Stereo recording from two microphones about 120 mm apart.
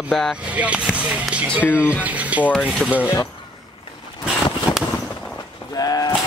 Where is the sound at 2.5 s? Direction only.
5° left (ahead or behind).